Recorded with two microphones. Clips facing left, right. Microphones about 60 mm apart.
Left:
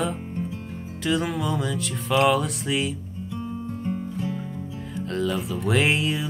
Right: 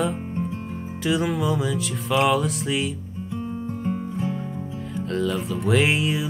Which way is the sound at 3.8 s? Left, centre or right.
Centre.